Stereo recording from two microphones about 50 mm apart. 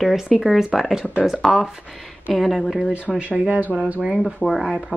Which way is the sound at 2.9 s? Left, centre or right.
Right.